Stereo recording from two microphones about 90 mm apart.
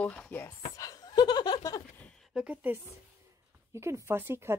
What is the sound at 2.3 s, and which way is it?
Speech, 15° right (ahead or behind).